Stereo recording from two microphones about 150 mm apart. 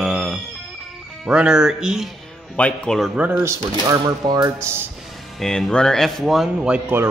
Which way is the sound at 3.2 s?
15° right (ahead or behind).